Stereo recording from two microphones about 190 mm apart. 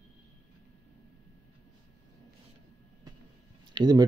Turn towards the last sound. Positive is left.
turn(degrees=-20)  # may be behind; listen again after turning